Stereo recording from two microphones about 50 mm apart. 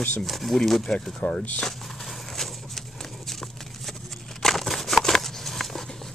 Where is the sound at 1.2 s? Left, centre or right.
Left.